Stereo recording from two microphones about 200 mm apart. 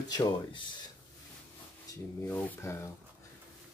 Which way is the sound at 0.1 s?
20° left (ahead or behind).